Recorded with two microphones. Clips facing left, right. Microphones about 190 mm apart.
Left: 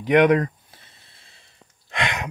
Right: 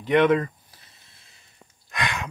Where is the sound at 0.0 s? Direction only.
15° left (ahead or behind).